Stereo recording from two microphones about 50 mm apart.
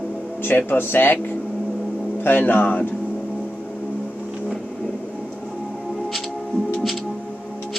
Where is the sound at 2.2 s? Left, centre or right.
Left.